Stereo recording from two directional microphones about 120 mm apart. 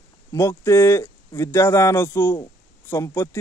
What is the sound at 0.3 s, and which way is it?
Speech, 20° left (ahead or behind).